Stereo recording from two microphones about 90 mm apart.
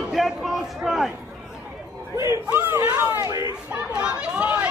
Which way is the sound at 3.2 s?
45° right (ahead or behind).